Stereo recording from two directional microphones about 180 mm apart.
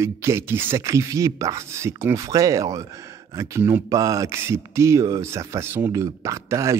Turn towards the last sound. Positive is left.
turn(degrees=-15)  # may be behind; listen again after turning